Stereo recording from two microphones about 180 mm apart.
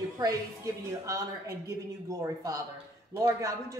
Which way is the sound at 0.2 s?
20° right (ahead or behind).